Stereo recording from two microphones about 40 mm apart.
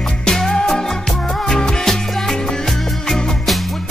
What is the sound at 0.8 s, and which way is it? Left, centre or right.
Music, centre.